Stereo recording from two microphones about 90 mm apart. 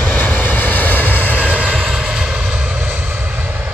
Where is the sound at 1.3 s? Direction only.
15° right (ahead or behind).